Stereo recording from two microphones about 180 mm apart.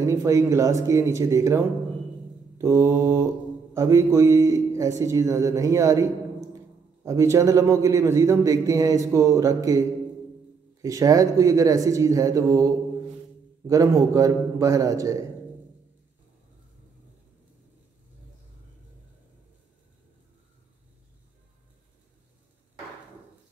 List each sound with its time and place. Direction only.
0.0 s a man's voice: 15° right (ahead or behind)
2.6 s a man's voice: 15° right (ahead or behind)
7.1 s a man's voice: 15° right (ahead or behind)